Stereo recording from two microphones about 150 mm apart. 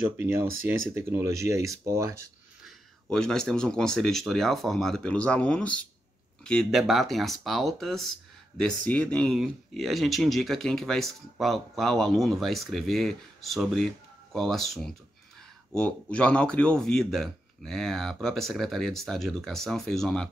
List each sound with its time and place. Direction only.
0.2 s speech: 15° right (ahead or behind)
2.6 s speech: 5° left (ahead or behind)